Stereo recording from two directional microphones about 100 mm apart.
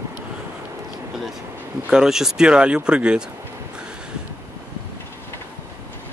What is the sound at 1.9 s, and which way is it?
Speech, 5° right (ahead or behind).